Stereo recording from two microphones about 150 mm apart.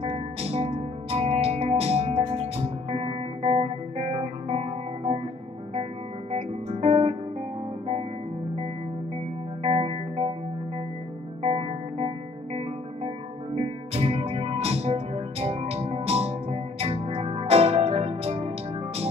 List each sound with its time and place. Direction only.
0.0 s music: 40° right (ahead or behind)
6.3 s music: 40° right (ahead or behind)
9.6 s music: 40° right (ahead or behind)
11.4 s music: 40° right (ahead or behind)
13.6 s music: 40° right (ahead or behind)